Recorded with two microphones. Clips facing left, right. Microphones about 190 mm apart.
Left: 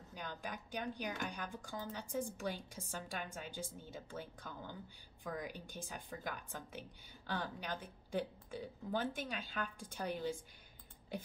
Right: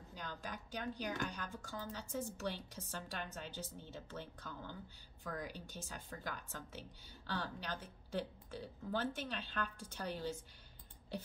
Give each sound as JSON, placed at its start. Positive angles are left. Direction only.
{"t": 0.1, "sound": "a woman's voice", "side_deg": 15}